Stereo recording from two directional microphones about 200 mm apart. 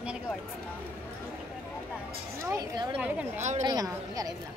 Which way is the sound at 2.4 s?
20° right (ahead or behind).